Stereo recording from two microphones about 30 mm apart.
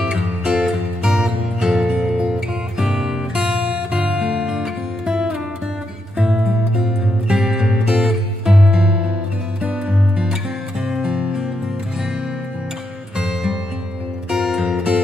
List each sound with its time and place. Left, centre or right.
0.0 s music: right
3.3 s music: right; by 7.9 s centre
7.9 s music: centre
8.5 s music: right
11.0 s music: right
14.3 s music: centre